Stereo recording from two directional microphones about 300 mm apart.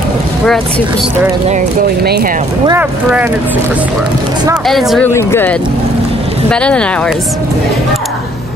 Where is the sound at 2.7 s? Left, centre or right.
Centre.